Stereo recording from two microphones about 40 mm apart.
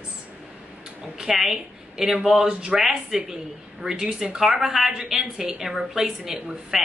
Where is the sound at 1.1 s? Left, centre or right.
Centre.